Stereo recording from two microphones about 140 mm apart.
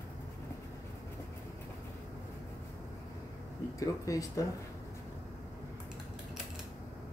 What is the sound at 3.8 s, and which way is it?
Mantra, 25° left (ahead or behind).